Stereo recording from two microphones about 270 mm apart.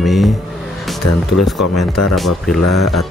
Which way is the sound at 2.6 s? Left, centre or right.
Left.